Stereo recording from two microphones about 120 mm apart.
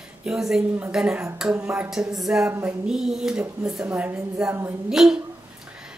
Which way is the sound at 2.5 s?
20° right (ahead or behind).